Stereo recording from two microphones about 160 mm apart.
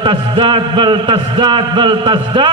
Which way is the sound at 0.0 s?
30° right (ahead or behind).